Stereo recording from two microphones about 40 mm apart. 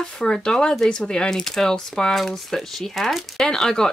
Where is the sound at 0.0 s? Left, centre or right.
Centre.